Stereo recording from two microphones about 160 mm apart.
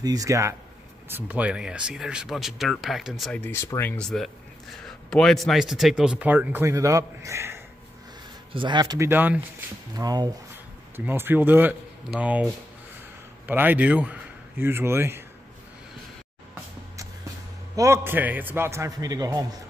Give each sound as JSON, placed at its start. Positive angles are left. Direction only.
{"t": 0.0, "sound": "speech", "side_deg": -20}
{"t": 3.3, "sound": "speech", "side_deg": 15}
{"t": 8.5, "sound": "speech", "side_deg": -30}
{"t": 9.9, "sound": "speech", "side_deg": -25}
{"t": 11.1, "sound": "speech", "side_deg": -15}
{"t": 17.7, "sound": "speech", "side_deg": -15}